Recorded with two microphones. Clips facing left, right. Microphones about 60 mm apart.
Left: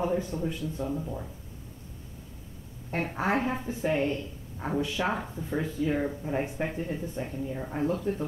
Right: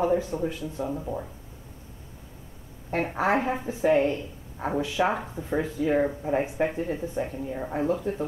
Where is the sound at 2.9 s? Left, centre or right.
Centre.